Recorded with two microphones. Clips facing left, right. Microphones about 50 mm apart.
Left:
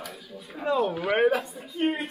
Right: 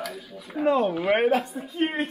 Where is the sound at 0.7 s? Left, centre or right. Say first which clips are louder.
Right 3 dB; centre.